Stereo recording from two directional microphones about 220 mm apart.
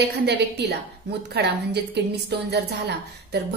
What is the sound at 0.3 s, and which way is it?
A woman's voice, 50° right (ahead or behind).